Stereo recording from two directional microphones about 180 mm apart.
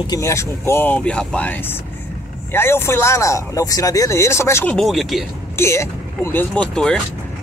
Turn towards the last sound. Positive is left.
turn(degrees=5)  # may be behind; listen again after turning